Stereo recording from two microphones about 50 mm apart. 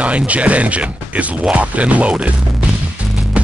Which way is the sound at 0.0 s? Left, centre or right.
Right.